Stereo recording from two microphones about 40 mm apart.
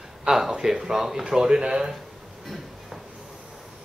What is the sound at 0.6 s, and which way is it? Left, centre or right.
Speech, centre.